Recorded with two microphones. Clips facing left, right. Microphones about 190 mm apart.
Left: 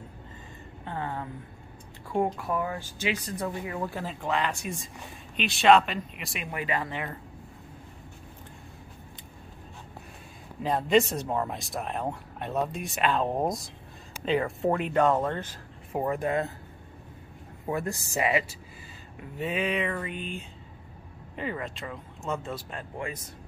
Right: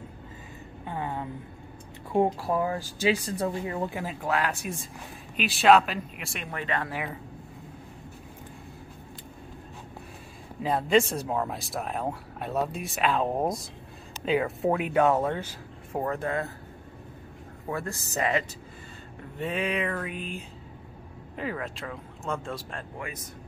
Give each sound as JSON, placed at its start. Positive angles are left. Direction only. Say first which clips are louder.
{"t": 0.8, "sound": "a woman's voice", "louder": "right 1 dB", "side_deg": -15}
{"t": 2.1, "sound": "speech", "louder": "right 3 dB", "side_deg": -25}
{"t": 3.9, "sound": "speech", "louder": "right 1 dB", "side_deg": -10}
{"t": 6.8, "sound": "speech", "louder": "right 1 dB", "side_deg": -5}
{"t": 10.6, "sound": "speech", "louder": "even", "side_deg": 0}
{"t": 15.9, "sound": "speech", "louder": "left 2 dB", "side_deg": 10}
{"t": 17.6, "sound": "speech", "louder": "left 2 dB", "side_deg": 15}